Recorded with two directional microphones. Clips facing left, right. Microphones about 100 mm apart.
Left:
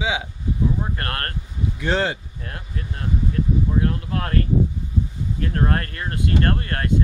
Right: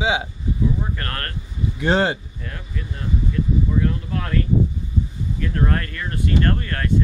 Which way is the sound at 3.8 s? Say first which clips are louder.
Even; 45° left (ahead or behind).